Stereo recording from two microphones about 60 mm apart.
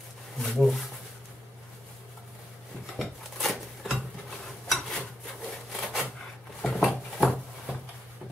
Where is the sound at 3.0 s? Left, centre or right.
Centre.